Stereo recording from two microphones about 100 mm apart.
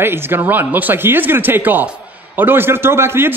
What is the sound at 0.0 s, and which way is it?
Speech, 25° right (ahead or behind).